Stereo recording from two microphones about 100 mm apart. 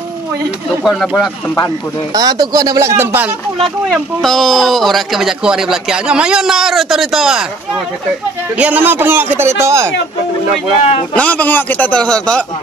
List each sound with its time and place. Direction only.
0.8 s speech: centre (ahead or behind)
2.1 s speech: 40° right (ahead or behind)
3.0 s a man's voice: 20° right (ahead or behind)
3.9 s speech: 5° left (ahead or behind)
8.5 s a man's voice: 15° right (ahead or behind)
11.1 s a man's voice: 15° left (ahead or behind)